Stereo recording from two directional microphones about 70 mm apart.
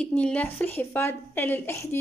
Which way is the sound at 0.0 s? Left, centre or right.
Centre.